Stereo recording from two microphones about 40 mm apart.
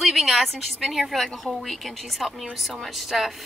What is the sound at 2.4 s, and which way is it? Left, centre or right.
Speech, centre.